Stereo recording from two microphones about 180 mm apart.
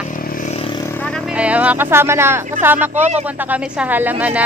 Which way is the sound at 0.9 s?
5° left (ahead or behind).